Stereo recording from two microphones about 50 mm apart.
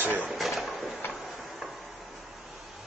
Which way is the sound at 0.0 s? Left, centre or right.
Right.